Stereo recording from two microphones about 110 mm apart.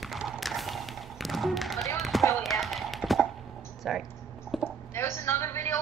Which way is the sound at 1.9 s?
Centre (ahead or behind).